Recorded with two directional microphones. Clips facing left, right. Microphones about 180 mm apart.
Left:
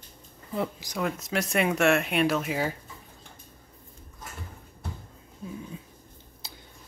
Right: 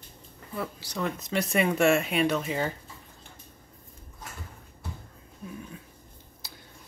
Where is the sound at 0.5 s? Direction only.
15° left (ahead or behind).